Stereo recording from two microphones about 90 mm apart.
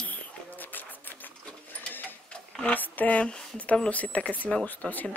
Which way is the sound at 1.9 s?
15° left (ahead or behind).